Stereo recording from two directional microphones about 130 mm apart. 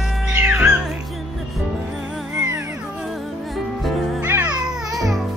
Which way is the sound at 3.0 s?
Centre (ahead or behind).